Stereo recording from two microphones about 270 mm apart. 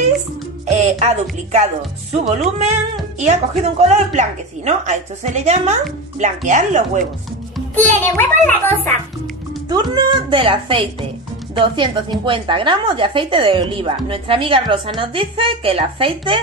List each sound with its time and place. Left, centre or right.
0.7 s music: right
2.1 s a woman's voice: right
8.0 s a child's voice: centre
9.7 s a woman's voice: centre